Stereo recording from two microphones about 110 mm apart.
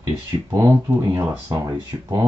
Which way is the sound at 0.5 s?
25° right (ahead or behind).